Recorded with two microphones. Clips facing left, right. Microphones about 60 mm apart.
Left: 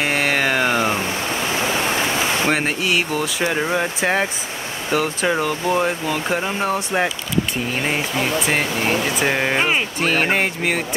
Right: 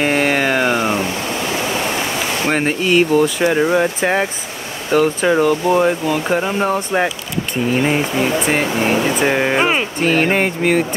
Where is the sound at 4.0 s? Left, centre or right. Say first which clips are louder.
Right 2 dB; centre.